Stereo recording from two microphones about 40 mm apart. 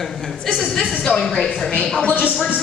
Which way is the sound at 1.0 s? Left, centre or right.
Centre.